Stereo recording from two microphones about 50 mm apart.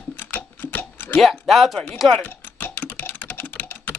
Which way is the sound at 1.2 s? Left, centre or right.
Centre.